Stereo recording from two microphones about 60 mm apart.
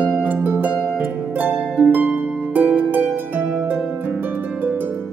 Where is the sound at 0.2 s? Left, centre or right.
Right.